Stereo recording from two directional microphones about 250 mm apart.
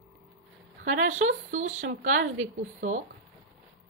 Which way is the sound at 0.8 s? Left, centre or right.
Right.